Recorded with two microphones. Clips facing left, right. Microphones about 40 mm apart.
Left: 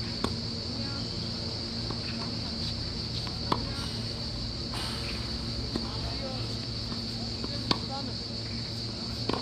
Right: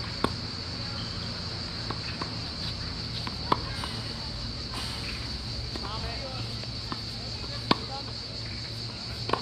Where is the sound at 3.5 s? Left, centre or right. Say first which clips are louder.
Right 3 dB; centre.